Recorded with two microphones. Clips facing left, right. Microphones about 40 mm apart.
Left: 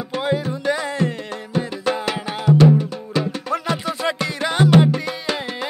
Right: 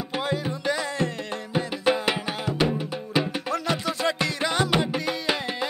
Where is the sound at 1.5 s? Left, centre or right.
Centre.